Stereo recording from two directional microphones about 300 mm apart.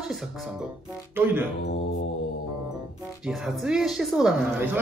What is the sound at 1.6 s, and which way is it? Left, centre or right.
Mantra, left.